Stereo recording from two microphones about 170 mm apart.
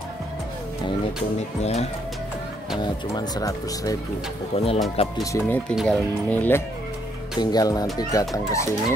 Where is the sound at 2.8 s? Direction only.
25° left (ahead or behind).